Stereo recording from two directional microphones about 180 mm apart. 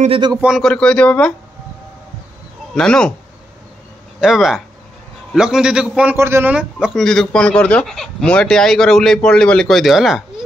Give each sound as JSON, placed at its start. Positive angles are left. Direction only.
{"t": 0.0, "sound": "speech", "side_deg": -30}
{"t": 0.4, "sound": "a man's voice", "side_deg": 0}
{"t": 2.7, "sound": "a man's voice", "side_deg": 5}
{"t": 4.2, "sound": "a man's voice", "side_deg": 0}